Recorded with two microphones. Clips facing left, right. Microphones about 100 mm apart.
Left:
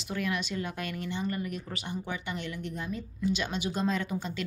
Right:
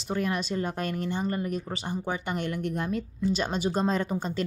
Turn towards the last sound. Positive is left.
turn(degrees=-40)  # may be behind; listen again after turning